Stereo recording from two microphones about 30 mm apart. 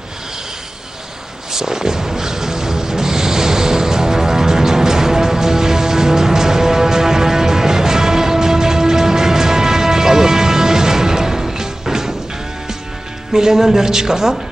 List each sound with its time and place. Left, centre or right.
1.5 s music: centre
13.3 s speech: centre